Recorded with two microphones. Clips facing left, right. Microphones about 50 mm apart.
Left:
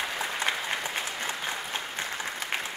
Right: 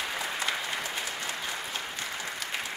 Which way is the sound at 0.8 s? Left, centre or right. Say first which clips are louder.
Left 2 dB; left.